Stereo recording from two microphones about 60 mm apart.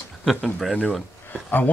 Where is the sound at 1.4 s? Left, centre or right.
Left.